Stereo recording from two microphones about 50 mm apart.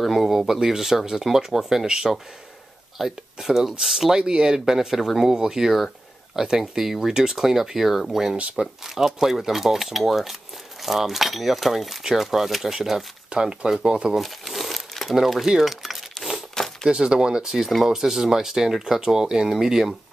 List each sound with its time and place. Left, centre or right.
0.0 s speech: centre
4.2 s speech: centre
5.3 s speech: centre
13.3 s speech: centre
14.1 s crumpling: centre
15.1 s a sound: centre
16.8 s speech: centre
17.5 s speech: centre